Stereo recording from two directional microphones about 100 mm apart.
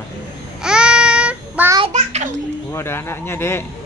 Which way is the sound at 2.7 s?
25° left (ahead or behind).